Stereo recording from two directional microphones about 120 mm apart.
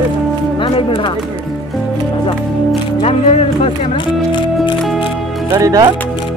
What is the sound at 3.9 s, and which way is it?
Music, 45° left (ahead or behind).